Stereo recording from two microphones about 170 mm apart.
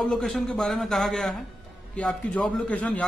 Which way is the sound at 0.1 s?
Centre (ahead or behind).